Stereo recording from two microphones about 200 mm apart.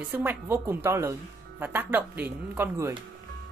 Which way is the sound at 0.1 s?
10° right (ahead or behind).